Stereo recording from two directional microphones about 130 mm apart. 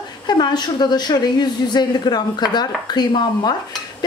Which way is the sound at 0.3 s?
35° left (ahead or behind).